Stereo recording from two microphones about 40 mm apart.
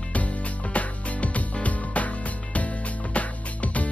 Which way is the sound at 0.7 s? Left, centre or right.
Left.